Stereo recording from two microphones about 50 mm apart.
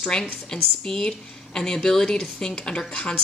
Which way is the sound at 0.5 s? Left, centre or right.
Centre.